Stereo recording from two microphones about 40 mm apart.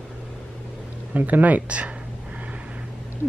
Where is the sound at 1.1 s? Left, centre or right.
Right.